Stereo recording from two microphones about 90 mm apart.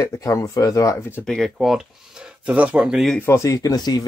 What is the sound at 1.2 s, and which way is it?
Speech, 5° left (ahead or behind).